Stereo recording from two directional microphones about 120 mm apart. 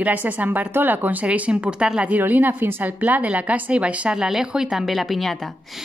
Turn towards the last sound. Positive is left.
turn(degrees=0)  # may be behind; listen again after turning